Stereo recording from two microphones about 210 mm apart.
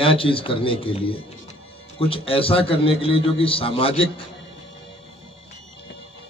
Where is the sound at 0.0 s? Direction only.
25° left (ahead or behind).